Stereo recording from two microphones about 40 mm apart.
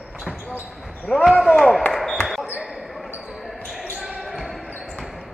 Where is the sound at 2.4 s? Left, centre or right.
Right.